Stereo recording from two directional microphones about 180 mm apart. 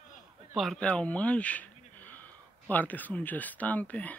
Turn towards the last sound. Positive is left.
turn(degrees=10)  # may be behind; listen again after turning